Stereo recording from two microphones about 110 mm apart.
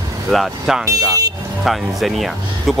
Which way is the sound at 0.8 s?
30° right (ahead or behind).